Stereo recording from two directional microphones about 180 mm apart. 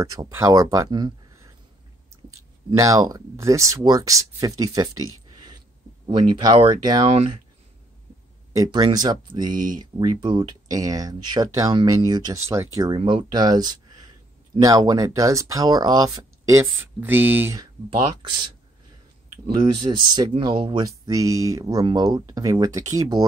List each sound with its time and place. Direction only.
0.0 s speech: 20° right (ahead or behind)
2.7 s speech: 20° right (ahead or behind)
8.5 s speech: 20° right (ahead or behind)
17.8 s speech: 25° right (ahead or behind)